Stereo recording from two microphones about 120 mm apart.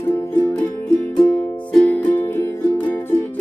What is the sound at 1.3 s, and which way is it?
Music, 10° left (ahead or behind).